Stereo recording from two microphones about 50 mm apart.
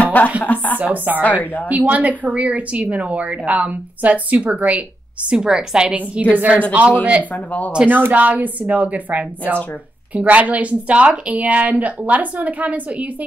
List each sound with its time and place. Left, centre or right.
0.0 s chopping: left
0.4 s a sound: left
0.7 s a woman's voice: right
1.4 s speech: left
1.7 s speech: right
5.3 s a woman's voice: centre
6.3 s a woman's voice: right
7.3 s speech: left
7.9 s a woman's voice: right